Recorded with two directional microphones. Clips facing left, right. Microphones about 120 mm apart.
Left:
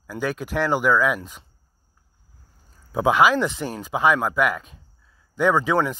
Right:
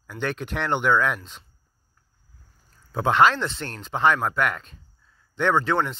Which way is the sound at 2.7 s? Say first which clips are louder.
Left 2 dB; 5° left (ahead or behind).